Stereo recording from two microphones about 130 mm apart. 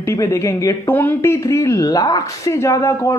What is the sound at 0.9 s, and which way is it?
Speech, 15° left (ahead or behind).